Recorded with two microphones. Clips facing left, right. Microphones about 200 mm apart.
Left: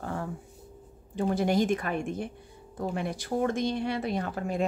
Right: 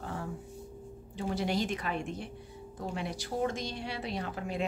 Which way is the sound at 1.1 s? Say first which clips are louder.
Left 6 dB; 50° left (ahead or behind).